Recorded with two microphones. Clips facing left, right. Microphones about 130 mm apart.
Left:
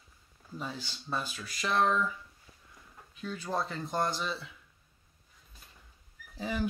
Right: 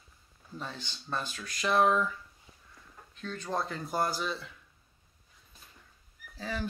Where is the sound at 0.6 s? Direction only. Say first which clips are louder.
Left 2 dB; 5° left (ahead or behind).